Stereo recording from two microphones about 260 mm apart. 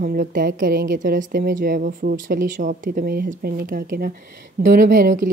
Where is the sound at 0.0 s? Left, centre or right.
Right.